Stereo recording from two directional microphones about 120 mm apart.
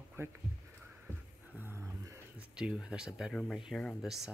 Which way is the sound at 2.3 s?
5° right (ahead or behind).